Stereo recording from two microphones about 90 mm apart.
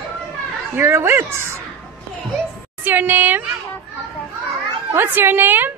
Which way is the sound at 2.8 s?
20° right (ahead or behind).